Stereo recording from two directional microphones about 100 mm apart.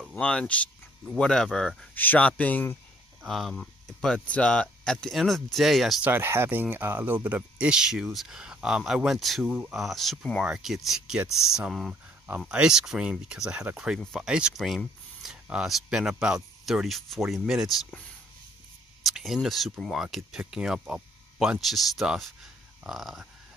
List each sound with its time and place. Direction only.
0.1 s speech: 10° left (ahead or behind)
3.2 s speech: centre (ahead or behind)
6.0 s speech: 20° right (ahead or behind); by 17.8 s centre (ahead or behind)
19.0 s speech: centre (ahead or behind)